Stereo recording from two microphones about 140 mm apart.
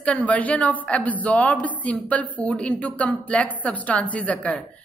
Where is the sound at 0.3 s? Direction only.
10° left (ahead or behind).